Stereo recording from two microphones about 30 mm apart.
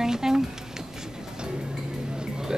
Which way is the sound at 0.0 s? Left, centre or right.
Centre.